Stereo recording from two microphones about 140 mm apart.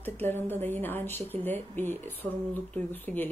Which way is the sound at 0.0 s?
15° left (ahead or behind).